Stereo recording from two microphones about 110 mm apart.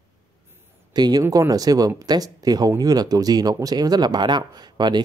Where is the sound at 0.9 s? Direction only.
35° right (ahead or behind).